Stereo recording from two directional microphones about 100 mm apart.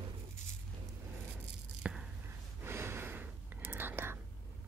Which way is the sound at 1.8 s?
10° right (ahead or behind).